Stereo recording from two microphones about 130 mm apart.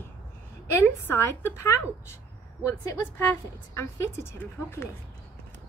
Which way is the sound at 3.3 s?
20° left (ahead or behind).